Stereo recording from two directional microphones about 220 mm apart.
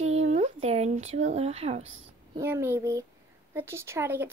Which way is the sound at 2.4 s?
10° right (ahead or behind).